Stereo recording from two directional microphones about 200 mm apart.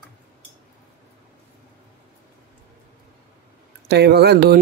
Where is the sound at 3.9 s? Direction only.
55° right (ahead or behind).